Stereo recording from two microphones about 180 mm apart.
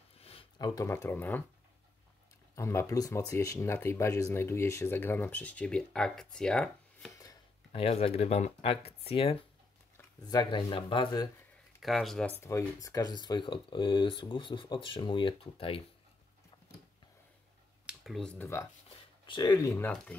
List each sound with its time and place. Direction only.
0.2 s a sound: 30° left (ahead or behind)
0.6 s speech: 20° left (ahead or behind)
2.5 s speech: 15° left (ahead or behind)
7.7 s speech: 30° left (ahead or behind)
11.8 s speech: centre (ahead or behind)
12.4 s speech: 15° left (ahead or behind)
17.8 s speech: centre (ahead or behind)
19.2 s speech: 25° left (ahead or behind)
19.7 s speech: 10° left (ahead or behind)